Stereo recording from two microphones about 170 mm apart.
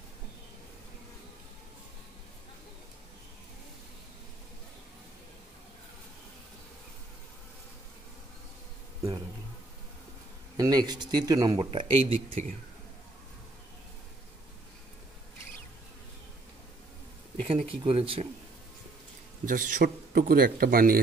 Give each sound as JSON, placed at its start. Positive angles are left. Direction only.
{"t": 10.6, "sound": "speech", "side_deg": -25}
{"t": 11.9, "sound": "speech", "side_deg": -35}
{"t": 17.5, "sound": "speech", "side_deg": -35}
{"t": 19.4, "sound": "a man's voice", "side_deg": -50}